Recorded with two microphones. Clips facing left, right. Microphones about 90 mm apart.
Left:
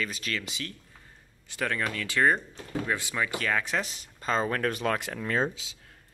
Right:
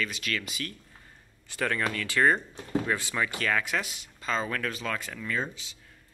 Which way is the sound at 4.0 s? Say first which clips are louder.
Left 3 dB; 40° left (ahead or behind).